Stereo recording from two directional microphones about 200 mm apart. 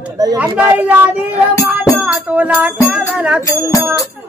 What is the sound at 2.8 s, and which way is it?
Speech, 5° right (ahead or behind).